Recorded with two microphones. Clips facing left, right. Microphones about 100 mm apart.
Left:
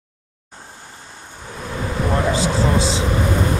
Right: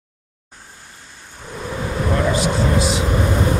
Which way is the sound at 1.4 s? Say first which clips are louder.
Right 1 dB; centre (ahead or behind).